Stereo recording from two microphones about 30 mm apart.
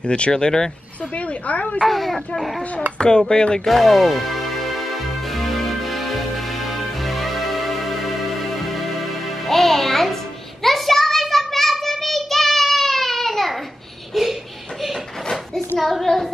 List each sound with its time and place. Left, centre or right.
0.0 s speech: left
0.3 s speech: left
1.1 s speech: left
1.9 s speech: centre
3.0 s speech: left
3.6 s speech: centre
5.3 s music: centre
9.5 s music: centre
10.6 s child singing: centre
14.1 s a sound: centre
16.1 s singing: centre